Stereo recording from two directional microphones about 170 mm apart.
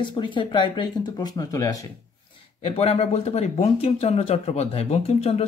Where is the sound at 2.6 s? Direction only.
35° left (ahead or behind).